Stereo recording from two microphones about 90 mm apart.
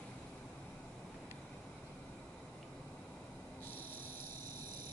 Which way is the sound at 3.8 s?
20° left (ahead or behind).